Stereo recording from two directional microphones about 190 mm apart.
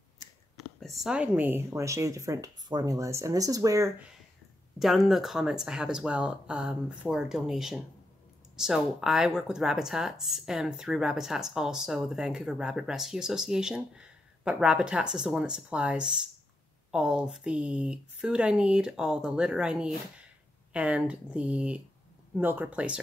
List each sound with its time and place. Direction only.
0.7 s speech: centre (ahead or behind); by 3.9 s 15° right (ahead or behind)
4.7 s speech: centre (ahead or behind)